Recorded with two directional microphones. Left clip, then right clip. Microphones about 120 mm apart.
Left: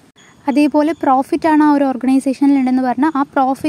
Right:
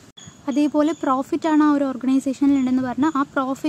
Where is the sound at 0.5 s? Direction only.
50° left (ahead or behind).